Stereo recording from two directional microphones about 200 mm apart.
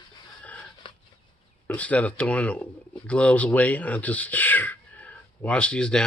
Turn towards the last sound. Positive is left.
turn(degrees=5)  # may be behind; listen again after turning